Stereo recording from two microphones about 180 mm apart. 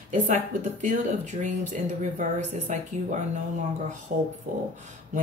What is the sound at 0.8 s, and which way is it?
Speech, 40° right (ahead or behind).